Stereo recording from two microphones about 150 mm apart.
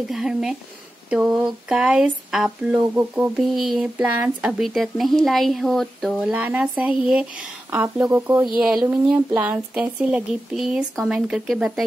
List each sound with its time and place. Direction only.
0.1 s speech: 5° right (ahead or behind)
8.5 s speech: centre (ahead or behind)
8.8 s speech: 15° right (ahead or behind)